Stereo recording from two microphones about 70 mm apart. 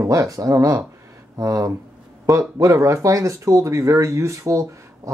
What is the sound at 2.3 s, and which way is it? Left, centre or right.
Speech, right.